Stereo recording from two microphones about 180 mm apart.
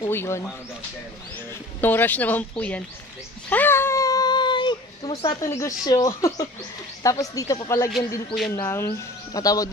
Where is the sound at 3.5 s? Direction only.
10° left (ahead or behind).